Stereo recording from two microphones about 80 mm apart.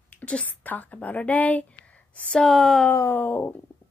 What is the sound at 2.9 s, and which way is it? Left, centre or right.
Speech, left.